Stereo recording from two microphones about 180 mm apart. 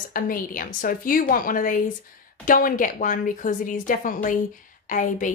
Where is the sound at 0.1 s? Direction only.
50° left (ahead or behind).